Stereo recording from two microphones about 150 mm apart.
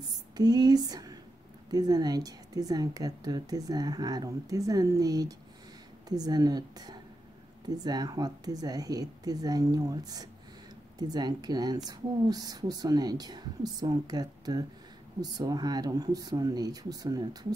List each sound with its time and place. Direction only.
0.4 s a woman's voice: 25° right (ahead or behind)